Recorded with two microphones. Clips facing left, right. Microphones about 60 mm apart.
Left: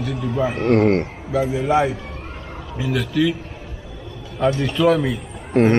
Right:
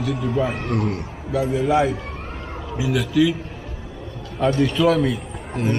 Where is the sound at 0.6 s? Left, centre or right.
Left.